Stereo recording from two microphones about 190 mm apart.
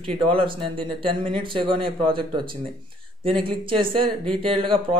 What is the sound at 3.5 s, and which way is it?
Speech, 25° right (ahead or behind).